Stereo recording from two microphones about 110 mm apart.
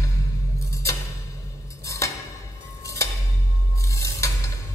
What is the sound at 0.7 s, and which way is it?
Music, 30° left (ahead or behind).